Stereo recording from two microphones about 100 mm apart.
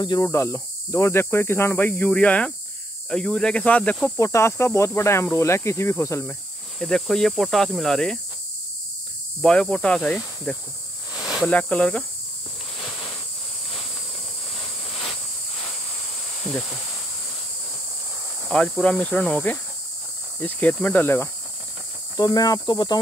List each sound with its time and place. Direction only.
0.2 s speech: 25° left (ahead or behind); by 4.1 s 10° left (ahead or behind)
4.2 s speech: 30° left (ahead or behind)
6.8 s speech: 5° left (ahead or behind)
9.4 s speech: 10° left (ahead or behind)
11.1 s cricket: 5° right (ahead or behind)
11.4 s speech: 15° left (ahead or behind)
12.7 s a sound: 5° left (ahead or behind)
14.5 s a sound: 5° left (ahead or behind)
18.5 s speech: 10° left (ahead or behind)
22.1 s speech: 40° left (ahead or behind)